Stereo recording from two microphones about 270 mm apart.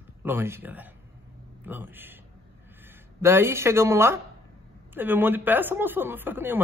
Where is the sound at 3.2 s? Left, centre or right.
Centre.